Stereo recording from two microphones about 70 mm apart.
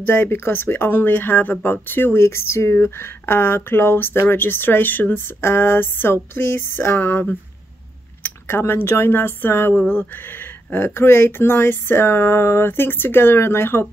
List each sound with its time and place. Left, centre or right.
0.0 s speech: left